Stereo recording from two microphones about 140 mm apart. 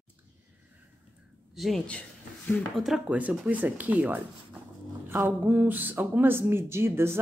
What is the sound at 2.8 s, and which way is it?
Speech, 5° right (ahead or behind).